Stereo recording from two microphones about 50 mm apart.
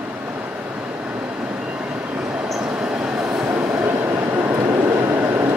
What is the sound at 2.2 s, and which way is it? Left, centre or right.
Train, centre.